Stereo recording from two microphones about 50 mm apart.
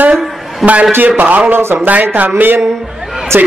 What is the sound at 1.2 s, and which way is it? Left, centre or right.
Speech, right.